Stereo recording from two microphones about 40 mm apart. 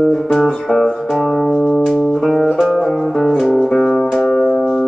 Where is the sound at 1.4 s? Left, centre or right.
Left.